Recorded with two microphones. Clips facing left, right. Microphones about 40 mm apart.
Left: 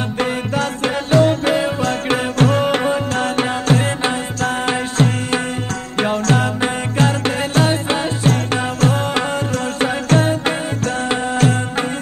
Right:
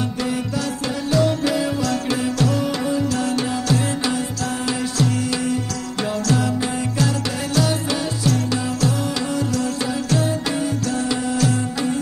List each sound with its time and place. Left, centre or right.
0.2 s music: left